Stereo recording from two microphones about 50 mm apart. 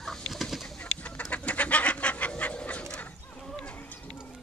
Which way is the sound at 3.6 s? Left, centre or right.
Left.